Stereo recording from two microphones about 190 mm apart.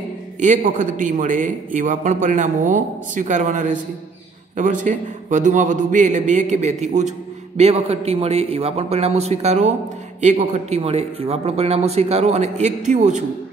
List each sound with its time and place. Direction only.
0.4 s a man's voice: 40° right (ahead or behind)